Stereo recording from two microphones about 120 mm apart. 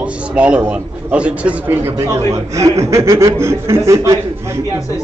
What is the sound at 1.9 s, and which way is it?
Speech, 25° right (ahead or behind).